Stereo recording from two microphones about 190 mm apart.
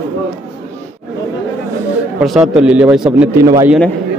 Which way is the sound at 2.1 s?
Centre (ahead or behind).